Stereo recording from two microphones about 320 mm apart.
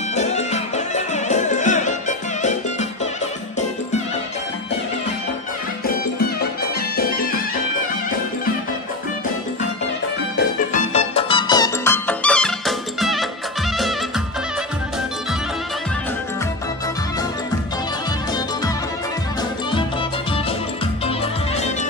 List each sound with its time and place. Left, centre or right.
0.1 s music: left
10.7 s music: left; by 13.3 s centre